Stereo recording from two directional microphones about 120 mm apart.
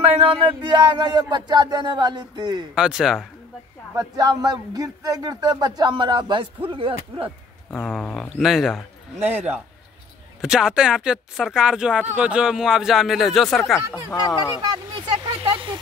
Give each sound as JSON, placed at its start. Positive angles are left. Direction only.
{"t": 0.0, "sound": "speech", "side_deg": -55}
{"t": 2.7, "sound": "speech", "side_deg": -5}
{"t": 3.9, "sound": "speech", "side_deg": -30}
{"t": 7.7, "sound": "speech", "side_deg": 15}
{"t": 8.4, "sound": "speech", "side_deg": 0}
{"t": 9.2, "sound": "a man's voice", "side_deg": -60}
{"t": 10.4, "sound": "speech", "side_deg": -5}
{"t": 14.1, "sound": "speech", "side_deg": 35}
{"t": 15.2, "sound": "a sound", "side_deg": -40}